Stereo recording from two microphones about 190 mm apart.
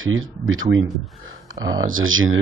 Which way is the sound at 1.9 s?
90° right.